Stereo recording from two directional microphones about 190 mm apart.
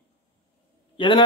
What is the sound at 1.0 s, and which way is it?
Speech, 25° left (ahead or behind).